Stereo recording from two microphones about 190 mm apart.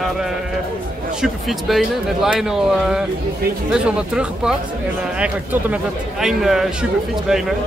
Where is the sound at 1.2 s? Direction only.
Centre (ahead or behind).